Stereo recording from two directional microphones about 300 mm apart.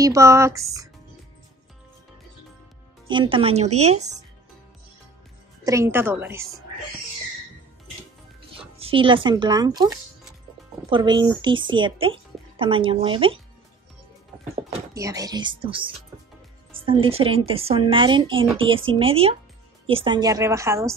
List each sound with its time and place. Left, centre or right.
0.0 s speech: centre
3.1 s speech: centre
5.6 s speech: centre
8.7 s speech: centre
10.9 s speech: centre
14.5 s speech: centre